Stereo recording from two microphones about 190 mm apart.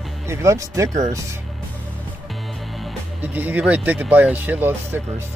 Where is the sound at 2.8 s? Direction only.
10° right (ahead or behind).